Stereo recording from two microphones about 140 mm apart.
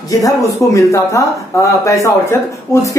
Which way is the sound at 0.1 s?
20° left (ahead or behind).